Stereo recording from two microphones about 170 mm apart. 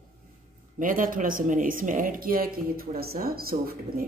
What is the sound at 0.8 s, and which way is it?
Speech, 55° right (ahead or behind).